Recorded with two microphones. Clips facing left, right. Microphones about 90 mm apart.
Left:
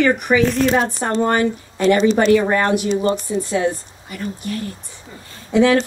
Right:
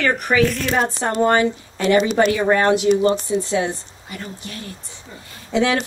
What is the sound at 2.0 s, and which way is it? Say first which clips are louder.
Speech: even; 35° left (ahead or behind).